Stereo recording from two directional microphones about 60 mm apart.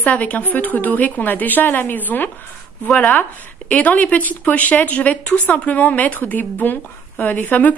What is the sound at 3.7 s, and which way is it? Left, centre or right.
Speech, left.